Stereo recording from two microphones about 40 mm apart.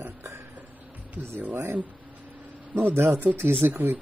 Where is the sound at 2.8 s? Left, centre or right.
Right.